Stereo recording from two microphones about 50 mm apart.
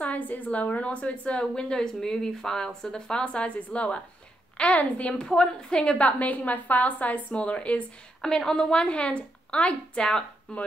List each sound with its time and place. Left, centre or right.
0.0 s a woman's voice: left
1.4 s a woman's voice: centre
5.9 s a woman's voice: left
8.2 s a woman's voice: centre